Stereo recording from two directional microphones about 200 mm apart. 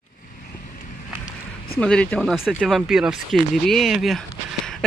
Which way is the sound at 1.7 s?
5° left (ahead or behind).